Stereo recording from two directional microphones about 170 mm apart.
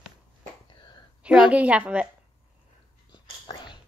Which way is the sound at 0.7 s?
25° left (ahead or behind).